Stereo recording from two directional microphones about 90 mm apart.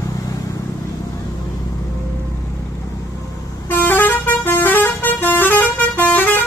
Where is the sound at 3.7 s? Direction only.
20° left (ahead or behind).